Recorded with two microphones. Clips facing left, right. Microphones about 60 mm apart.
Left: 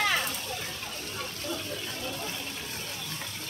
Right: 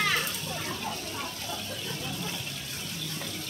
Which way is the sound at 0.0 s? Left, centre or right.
Centre.